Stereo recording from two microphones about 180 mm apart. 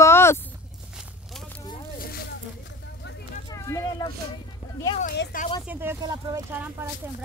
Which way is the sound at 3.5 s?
20° left (ahead or behind).